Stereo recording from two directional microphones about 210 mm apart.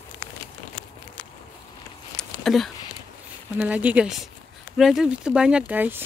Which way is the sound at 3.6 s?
5° right (ahead or behind).